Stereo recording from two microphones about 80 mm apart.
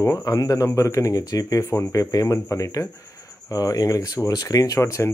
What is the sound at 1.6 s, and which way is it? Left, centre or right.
Speech, left.